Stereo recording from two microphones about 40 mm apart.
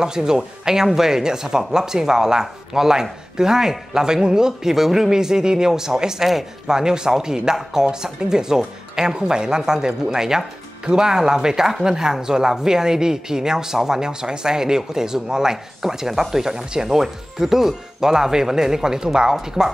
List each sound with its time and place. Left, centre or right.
0.0 s speech: centre